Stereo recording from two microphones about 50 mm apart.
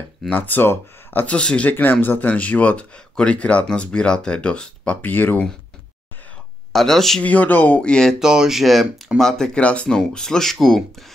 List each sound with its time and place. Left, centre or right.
0.4 s speech: left
1.2 s speech: left
1.7 s speech: left
5.0 s speech: left
6.7 s speech: centre
7.2 s speech: left
7.8 s speech: centre
8.2 s speech: centre
9.2 s speech: centre
9.6 s speech: left
9.8 s speech: centre